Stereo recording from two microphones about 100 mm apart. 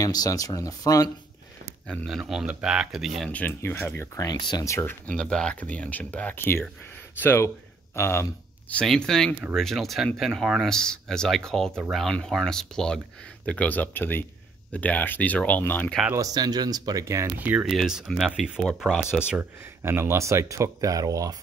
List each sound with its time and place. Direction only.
0.0 s speech: 35° left (ahead or behind)
2.0 s speech: 5° right (ahead or behind)
3.3 s speech: 15° left (ahead or behind)
4.2 s speech: 45° left (ahead or behind)
4.6 s speech: 25° left (ahead or behind)
5.0 s speech: 10° left (ahead or behind); by 8.3 s 25° left (ahead or behind)
8.8 s speech: 5° left (ahead or behind)
16.2 s speech: 40° right (ahead or behind)
17.0 s speech: 30° right (ahead or behind)
17.4 s speech: 15° right (ahead or behind)
17.6 s speech: 5° right (ahead or behind)
19.8 s speech: 25° right (ahead or behind)